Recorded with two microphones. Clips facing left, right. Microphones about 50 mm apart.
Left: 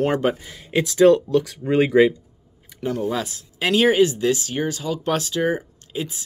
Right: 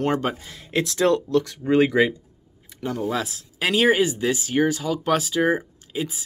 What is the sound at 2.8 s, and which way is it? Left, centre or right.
Speech, centre.